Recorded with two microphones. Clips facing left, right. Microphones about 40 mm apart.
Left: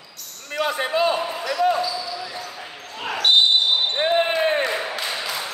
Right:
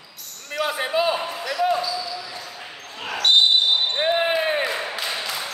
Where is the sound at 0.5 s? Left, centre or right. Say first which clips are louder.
Left 1 dB; centre.